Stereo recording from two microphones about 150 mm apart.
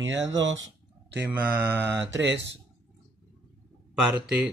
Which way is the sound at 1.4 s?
90° right.